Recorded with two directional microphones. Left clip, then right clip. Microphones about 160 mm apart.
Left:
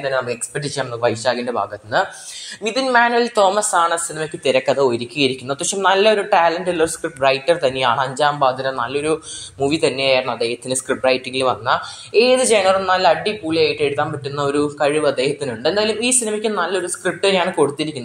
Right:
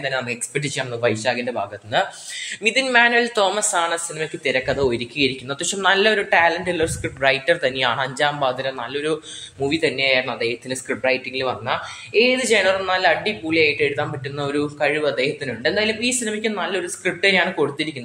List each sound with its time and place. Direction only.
1.0 s speech: centre (ahead or behind)
4.5 s speech: 20° left (ahead or behind)
4.7 s speech: 5° left (ahead or behind)
8.6 s speech: 10° left (ahead or behind)